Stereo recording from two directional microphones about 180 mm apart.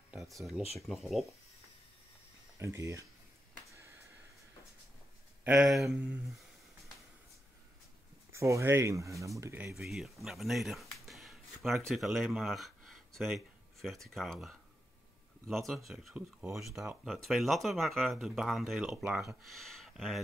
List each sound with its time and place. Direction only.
0.7 s speech: centre (ahead or behind)
2.6 s speech: 15° right (ahead or behind)
5.4 s speech: 5° right (ahead or behind)
8.3 s speech: 15° right (ahead or behind)
9.8 s speech: centre (ahead or behind)